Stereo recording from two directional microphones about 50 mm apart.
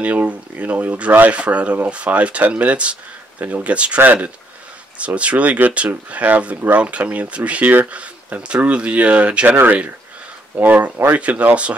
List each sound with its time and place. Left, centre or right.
0.0 s speech: right
4.0 s speech: right
4.9 s speech: right
10.5 s speech: right
11.1 s speech: right